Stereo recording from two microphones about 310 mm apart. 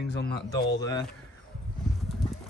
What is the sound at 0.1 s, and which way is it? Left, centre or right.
Speech, left.